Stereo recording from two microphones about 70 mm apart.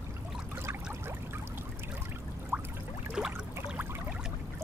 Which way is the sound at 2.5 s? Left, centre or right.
Right.